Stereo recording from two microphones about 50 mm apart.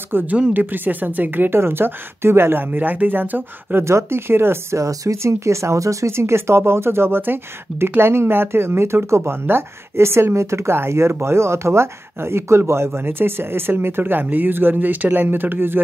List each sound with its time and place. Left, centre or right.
0.3 s speech: right
1.5 s speech: right
3.8 s speech: right
4.7 s speech: right